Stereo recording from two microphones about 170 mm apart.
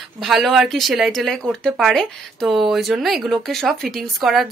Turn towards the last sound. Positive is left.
turn(degrees=0)  # may be behind; listen again after turning